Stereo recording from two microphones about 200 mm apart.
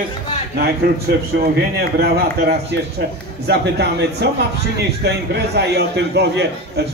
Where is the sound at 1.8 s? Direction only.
50° right (ahead or behind).